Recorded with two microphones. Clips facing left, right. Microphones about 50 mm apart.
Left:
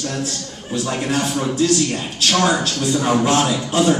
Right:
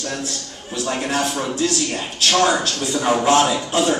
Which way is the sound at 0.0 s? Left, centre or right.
Centre.